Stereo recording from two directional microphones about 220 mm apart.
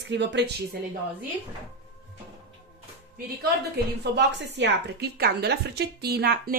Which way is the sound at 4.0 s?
50° right (ahead or behind).